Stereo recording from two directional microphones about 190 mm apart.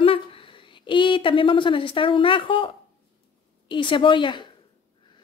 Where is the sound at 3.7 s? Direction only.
25° left (ahead or behind).